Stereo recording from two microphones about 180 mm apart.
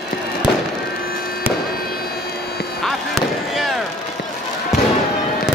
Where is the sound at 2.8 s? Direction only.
Centre (ahead or behind).